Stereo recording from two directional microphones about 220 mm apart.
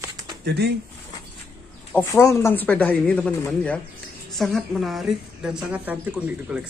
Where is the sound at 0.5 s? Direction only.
50° right (ahead or behind).